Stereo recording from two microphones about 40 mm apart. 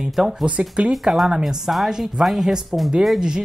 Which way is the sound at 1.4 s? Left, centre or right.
Centre.